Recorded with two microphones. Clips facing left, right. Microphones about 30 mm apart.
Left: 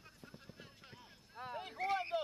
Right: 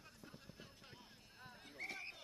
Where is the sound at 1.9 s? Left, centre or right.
Left.